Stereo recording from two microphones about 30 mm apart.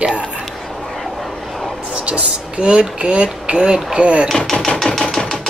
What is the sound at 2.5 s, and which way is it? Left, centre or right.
Speech, right.